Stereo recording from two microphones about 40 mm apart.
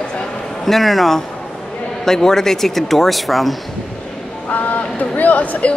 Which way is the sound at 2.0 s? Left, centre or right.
Centre.